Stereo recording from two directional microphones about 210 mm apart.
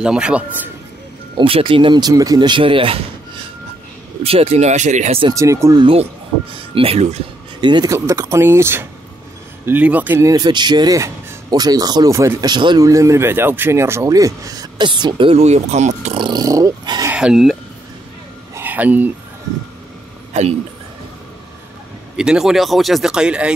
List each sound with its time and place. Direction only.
0.0 s speech: 5° right (ahead or behind)
1.4 s speech: 25° right (ahead or behind)
5.3 s speech: 15° right (ahead or behind)
17.1 s a sound: 5° right (ahead or behind)
22.1 s speech: 5° right (ahead or behind)